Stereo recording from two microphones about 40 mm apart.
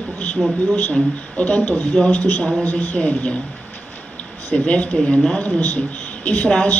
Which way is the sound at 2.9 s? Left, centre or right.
Left.